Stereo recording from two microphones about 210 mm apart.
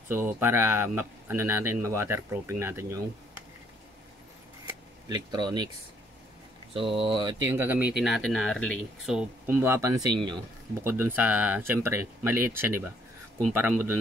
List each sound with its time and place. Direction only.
0.1 s speech: 10° right (ahead or behind)
5.0 s speech: 20° right (ahead or behind)
6.7 s speech: 25° right (ahead or behind)
7.4 s speech: 10° right (ahead or behind)
9.5 s speech: 10° right (ahead or behind)